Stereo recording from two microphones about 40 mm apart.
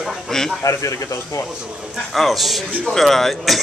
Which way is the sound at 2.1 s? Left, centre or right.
Centre.